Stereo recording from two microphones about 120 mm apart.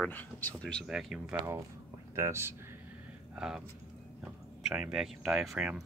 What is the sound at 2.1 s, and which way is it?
Speech, 25° right (ahead or behind).